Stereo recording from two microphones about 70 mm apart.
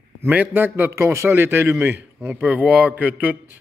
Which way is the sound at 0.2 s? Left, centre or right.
Right.